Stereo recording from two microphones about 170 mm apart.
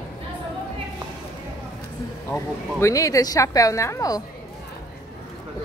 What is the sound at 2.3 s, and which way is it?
A woman's voice, 15° left (ahead or behind).